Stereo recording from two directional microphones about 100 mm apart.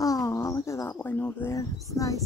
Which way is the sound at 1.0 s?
20° left (ahead or behind).